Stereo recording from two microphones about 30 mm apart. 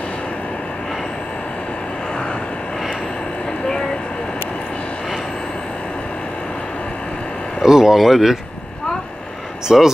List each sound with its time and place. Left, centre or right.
7.6 s speech: centre
9.7 s speech: centre